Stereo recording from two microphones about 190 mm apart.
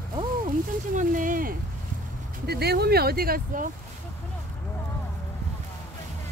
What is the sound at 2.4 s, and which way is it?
Speech, 55° right (ahead or behind).